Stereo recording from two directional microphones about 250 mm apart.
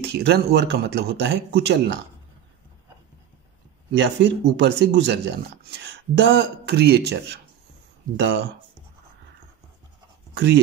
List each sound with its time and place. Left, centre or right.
0.1 s speech: right
4.2 s speech: right
10.3 s speech: right